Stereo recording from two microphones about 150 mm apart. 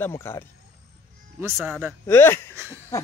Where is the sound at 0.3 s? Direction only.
15° left (ahead or behind).